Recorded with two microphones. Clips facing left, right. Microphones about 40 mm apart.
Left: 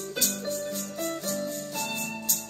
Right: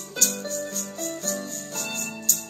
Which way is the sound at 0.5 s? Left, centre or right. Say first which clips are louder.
Even; centre.